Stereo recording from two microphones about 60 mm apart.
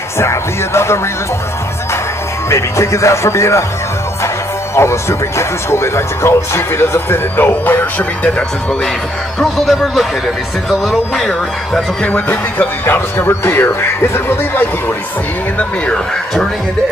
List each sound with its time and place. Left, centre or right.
0.2 s speech: left
2.5 s speech: left
4.8 s speech: left
9.4 s speech: centre
12.0 s speech: left